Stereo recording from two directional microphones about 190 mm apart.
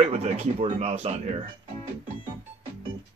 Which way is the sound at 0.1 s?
30° right (ahead or behind).